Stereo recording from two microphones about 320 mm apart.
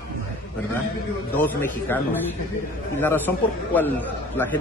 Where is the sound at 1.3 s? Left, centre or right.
Centre.